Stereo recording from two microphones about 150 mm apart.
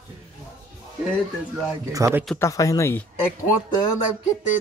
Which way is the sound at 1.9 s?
20° right (ahead or behind).